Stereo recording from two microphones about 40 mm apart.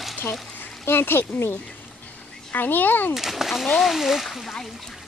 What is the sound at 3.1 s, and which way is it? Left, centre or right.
A woman's voice, centre.